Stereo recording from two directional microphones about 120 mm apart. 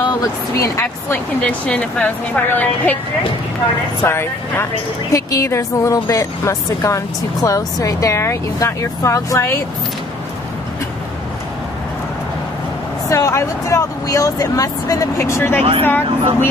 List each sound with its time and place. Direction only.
0.1 s speech: 25° left (ahead or behind)
1.4 s a woman's voice: 10° left (ahead or behind)
4.0 s speech: 20° left (ahead or behind)
13.1 s a woman's voice: 25° left (ahead or behind)